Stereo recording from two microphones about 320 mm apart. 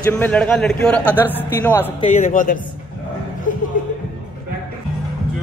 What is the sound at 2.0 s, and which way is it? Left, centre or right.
Speech, left.